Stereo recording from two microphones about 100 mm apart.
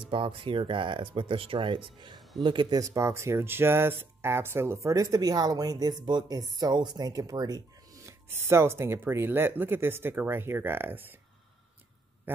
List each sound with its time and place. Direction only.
0.0 s speech: 60° right (ahead or behind)
2.8 s speech: 30° right (ahead or behind)